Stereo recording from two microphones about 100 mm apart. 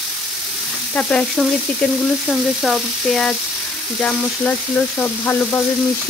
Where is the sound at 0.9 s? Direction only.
10° left (ahead or behind).